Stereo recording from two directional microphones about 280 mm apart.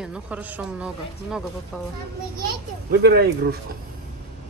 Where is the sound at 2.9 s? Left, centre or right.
Right.